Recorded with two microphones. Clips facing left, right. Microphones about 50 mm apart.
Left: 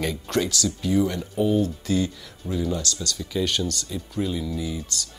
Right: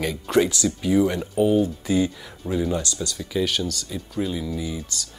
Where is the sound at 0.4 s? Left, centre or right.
Right.